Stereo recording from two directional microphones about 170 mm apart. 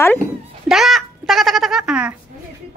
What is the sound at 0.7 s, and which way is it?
A child's voice, centre (ahead or behind).